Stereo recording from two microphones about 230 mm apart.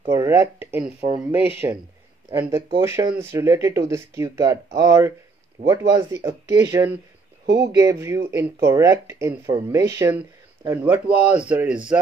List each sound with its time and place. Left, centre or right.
0.1 s speech: centre
7.4 s speech: right
7.7 s speech: centre